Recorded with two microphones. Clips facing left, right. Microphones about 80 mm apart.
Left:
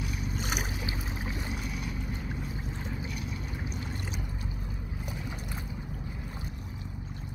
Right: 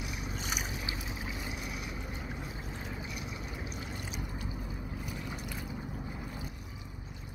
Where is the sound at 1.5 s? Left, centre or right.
Centre.